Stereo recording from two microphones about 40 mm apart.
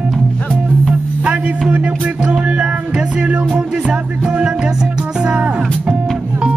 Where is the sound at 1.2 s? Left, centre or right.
Right.